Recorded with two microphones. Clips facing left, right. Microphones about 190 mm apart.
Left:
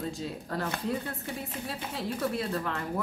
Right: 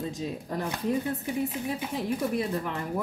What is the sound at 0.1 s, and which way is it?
Speech, 15° right (ahead or behind).